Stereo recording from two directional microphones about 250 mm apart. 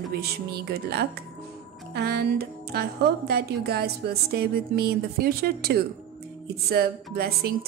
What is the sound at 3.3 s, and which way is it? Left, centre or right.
Speech, right.